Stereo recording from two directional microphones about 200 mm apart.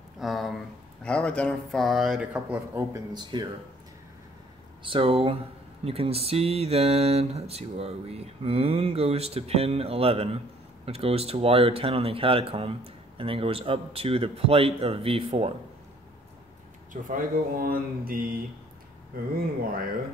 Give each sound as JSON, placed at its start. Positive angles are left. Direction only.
{"t": 0.2, "sound": "a sound", "side_deg": 0}
{"t": 1.0, "sound": "speech", "side_deg": 5}
{"t": 3.1, "sound": "speech", "side_deg": -20}
{"t": 4.8, "sound": "speech", "side_deg": -25}
{"t": 16.9, "sound": "speech", "side_deg": -45}